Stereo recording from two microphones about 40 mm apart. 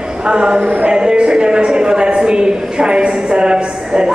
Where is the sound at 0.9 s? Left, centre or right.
Right.